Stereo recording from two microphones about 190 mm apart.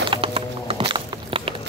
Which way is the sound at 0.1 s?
30° right (ahead or behind).